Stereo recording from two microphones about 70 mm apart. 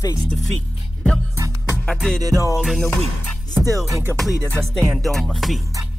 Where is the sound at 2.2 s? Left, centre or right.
Right.